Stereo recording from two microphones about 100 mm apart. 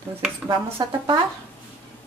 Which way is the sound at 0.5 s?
50° right (ahead or behind).